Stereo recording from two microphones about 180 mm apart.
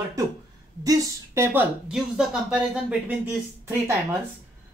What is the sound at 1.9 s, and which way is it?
Speech, 5° right (ahead or behind).